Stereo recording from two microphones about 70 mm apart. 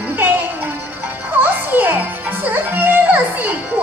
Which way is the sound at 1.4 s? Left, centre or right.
Right.